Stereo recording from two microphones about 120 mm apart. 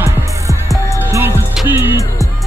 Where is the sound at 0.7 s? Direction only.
20° right (ahead or behind).